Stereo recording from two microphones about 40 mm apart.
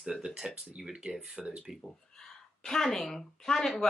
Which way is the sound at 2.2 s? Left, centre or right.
Centre.